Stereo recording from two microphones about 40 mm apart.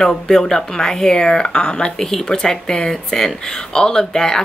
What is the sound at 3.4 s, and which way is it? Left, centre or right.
Speech, centre.